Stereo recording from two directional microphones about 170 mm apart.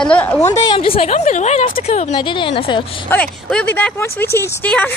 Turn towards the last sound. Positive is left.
turn(degrees=10)  # may be behind; listen again after turning